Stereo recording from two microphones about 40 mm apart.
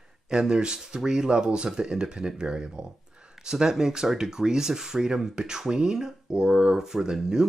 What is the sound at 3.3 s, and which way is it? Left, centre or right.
Speech, centre.